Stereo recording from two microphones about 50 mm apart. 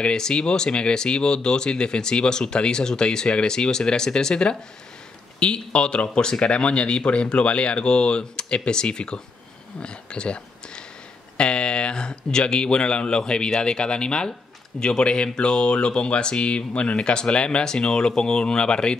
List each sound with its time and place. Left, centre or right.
0.0 s speech: centre